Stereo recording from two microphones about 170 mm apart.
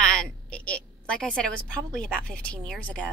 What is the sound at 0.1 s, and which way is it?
A woman's voice, 5° left (ahead or behind).